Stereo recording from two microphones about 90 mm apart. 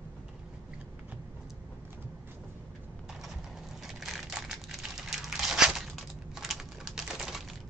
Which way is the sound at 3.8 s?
5° right (ahead or behind).